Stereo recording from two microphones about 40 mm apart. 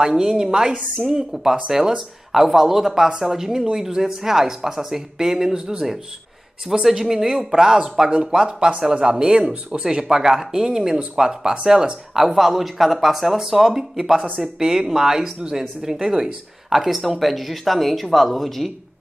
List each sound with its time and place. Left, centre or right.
0.0 s speech: centre
9.5 s speech: right
9.8 s speech: centre